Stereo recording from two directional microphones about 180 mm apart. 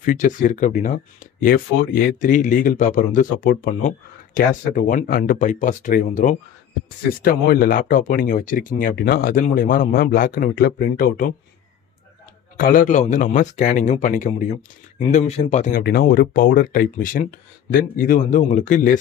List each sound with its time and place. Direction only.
0.0 s speech: 45° left (ahead or behind)
12.5 s speech: 50° left (ahead or behind)
15.8 s speech: 55° left (ahead or behind)